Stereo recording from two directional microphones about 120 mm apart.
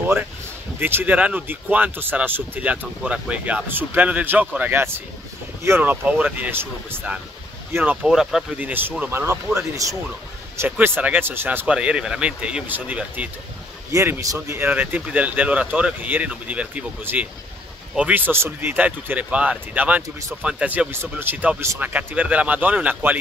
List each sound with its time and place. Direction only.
0.7 s speech: 15° right (ahead or behind)
8.1 s speech: centre (ahead or behind)
8.5 s speech: 15° right (ahead or behind)